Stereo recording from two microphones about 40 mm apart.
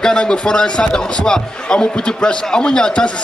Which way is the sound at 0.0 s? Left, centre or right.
Centre.